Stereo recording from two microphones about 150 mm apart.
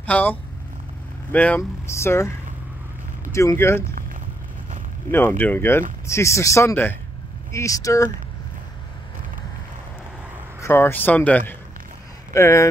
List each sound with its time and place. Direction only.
0.0 s speech: 10° left (ahead or behind)
5.1 s speech: 15° left (ahead or behind)
10.6 s speech: 15° left (ahead or behind)